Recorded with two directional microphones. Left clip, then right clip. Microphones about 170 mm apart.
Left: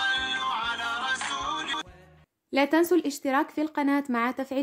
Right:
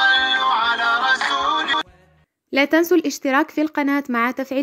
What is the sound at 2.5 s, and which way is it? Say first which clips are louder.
A woman's voice: right 6 dB; 20° right (ahead or behind).